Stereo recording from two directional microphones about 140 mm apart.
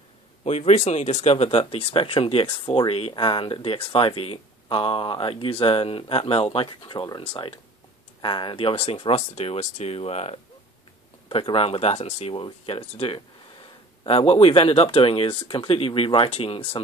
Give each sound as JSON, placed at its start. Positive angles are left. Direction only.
{"t": 0.4, "sound": "speech", "side_deg": 50}
{"t": 11.2, "sound": "speech", "side_deg": 35}